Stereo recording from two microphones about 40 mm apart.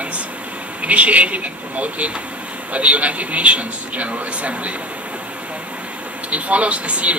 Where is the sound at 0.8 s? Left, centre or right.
Right.